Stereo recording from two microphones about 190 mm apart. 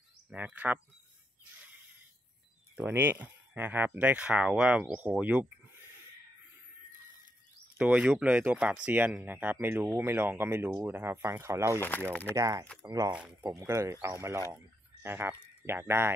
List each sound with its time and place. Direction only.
0.3 s speech: 5° right (ahead or behind)
2.7 s speech: 10° right (ahead or behind)
7.7 s speech: 5° right (ahead or behind)
12.1 s speech: 10° left (ahead or behind)
12.4 s speech: 15° right (ahead or behind)
13.1 s speech: 5° right (ahead or behind)
13.4 s speech: 20° right (ahead or behind)